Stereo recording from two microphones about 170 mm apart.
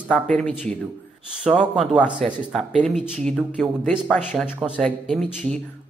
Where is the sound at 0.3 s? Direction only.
5° left (ahead or behind).